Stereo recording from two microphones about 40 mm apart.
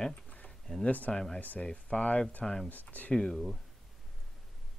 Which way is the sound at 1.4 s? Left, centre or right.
Left.